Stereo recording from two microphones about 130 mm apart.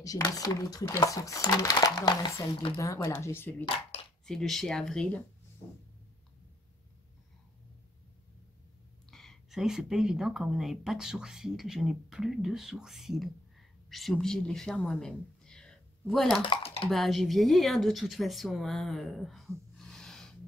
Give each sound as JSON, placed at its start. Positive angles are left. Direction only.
{"t": 0.0, "sound": "speech", "side_deg": 25}
{"t": 3.6, "sound": "a sound", "side_deg": 40}
{"t": 4.3, "sound": "speech", "side_deg": 0}
{"t": 5.6, "sound": "cat", "side_deg": 35}
{"t": 9.1, "sound": "speech", "side_deg": 0}
{"t": 16.4, "sound": "dishes", "side_deg": 45}
{"t": 16.9, "sound": "speech", "side_deg": 0}
{"t": 19.8, "sound": "a sound", "side_deg": 5}